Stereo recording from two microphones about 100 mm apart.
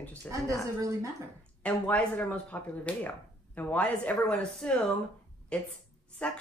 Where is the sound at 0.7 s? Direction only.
35° right (ahead or behind).